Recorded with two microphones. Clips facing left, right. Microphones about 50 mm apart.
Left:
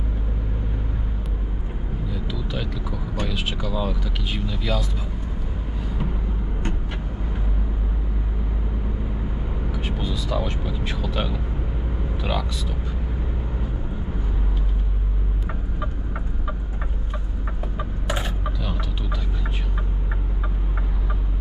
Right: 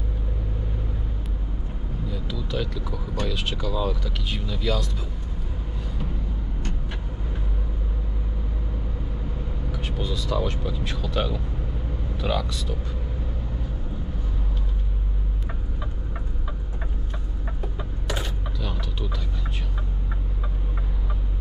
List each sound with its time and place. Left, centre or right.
2.0 s speech: centre
9.7 s speech: centre
17.7 s chicken: centre
18.6 s vehicle: centre